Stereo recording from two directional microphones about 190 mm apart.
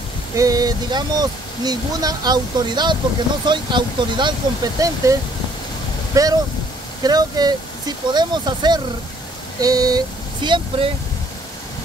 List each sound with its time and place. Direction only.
0.4 s speech: 20° right (ahead or behind)
6.2 s speech: 20° right (ahead or behind)
9.6 s vehicle: 20° right (ahead or behind)